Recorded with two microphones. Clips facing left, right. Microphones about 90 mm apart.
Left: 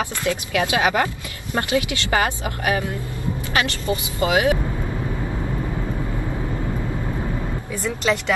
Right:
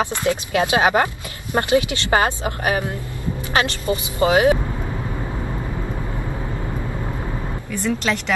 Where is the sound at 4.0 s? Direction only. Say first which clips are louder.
Right 4 dB; 25° right (ahead or behind).